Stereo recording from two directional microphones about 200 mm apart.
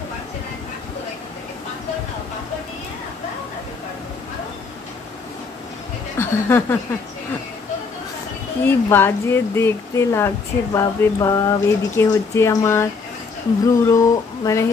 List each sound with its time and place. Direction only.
6.1 s speech: 10° left (ahead or behind)
8.6 s speech: 10° left (ahead or behind)
13.8 s speech: 15° left (ahead or behind)